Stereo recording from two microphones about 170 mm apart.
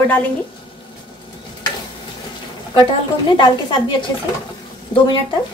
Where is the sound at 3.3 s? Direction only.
30° left (ahead or behind).